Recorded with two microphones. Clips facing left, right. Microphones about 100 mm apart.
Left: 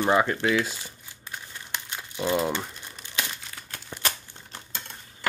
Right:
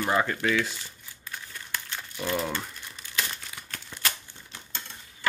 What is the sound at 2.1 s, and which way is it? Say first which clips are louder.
Speech: left 4 dB; 20° left (ahead or behind).